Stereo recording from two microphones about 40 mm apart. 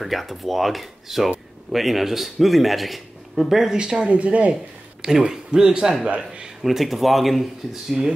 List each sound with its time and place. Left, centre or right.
0.0 s speech: centre
3.7 s speech: right
4.1 s speech: right
5.3 s a man's voice: centre
6.6 s speech: centre